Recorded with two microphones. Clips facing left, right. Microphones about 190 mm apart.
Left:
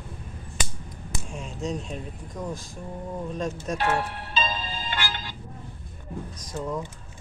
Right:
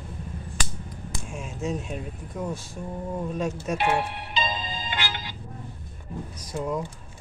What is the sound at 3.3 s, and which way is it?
Music, 10° right (ahead or behind).